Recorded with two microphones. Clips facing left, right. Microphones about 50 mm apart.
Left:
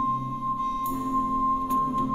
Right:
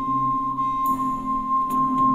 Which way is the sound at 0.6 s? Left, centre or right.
Centre.